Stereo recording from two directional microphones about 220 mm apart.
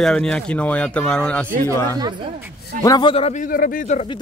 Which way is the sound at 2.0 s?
20° right (ahead or behind).